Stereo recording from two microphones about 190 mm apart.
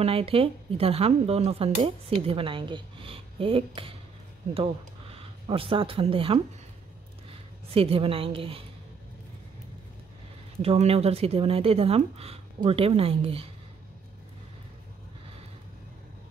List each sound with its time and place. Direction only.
0.0 s speech: 30° right (ahead or behind)
5.5 s speech: 30° right (ahead or behind)
7.7 s speech: 30° right (ahead or behind)
10.6 s speech: 30° right (ahead or behind)